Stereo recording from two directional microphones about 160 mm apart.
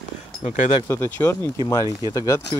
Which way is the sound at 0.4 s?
45° left (ahead or behind).